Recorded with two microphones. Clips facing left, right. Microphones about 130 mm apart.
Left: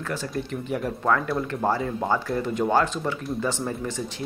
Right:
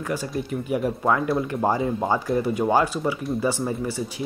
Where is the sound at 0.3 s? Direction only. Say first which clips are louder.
Right 3 dB; 10° right (ahead or behind).